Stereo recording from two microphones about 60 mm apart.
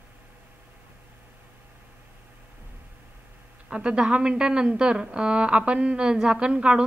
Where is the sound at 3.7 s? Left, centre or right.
Centre.